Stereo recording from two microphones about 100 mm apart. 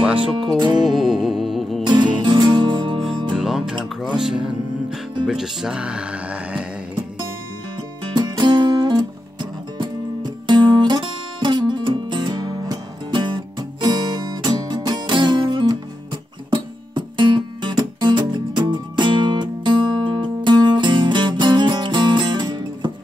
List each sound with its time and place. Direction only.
0.8 s music: centre (ahead or behind)
1.9 s music: 50° right (ahead or behind)
3.3 s music: 5° right (ahead or behind)
5.2 s speech: 5° right (ahead or behind)
8.0 s music: 50° right (ahead or behind)